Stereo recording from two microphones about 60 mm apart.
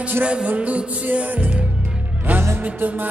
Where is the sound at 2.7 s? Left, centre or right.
Right.